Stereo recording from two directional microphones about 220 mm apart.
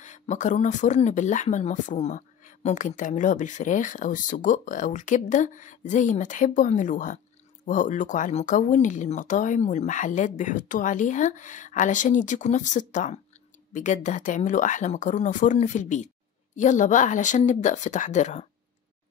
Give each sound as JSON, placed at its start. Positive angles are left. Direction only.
{"t": 0.0, "sound": "speech", "side_deg": 35}